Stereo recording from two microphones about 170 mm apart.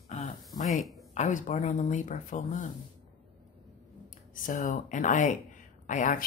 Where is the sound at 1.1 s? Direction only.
45° left (ahead or behind).